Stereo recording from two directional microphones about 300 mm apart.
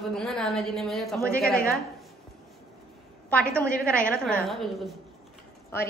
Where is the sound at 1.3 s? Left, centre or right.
Left.